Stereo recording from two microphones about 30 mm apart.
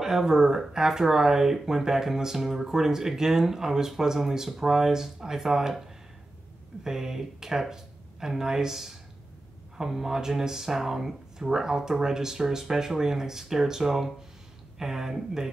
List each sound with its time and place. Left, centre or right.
0.0 s speech: centre
6.8 s speech: centre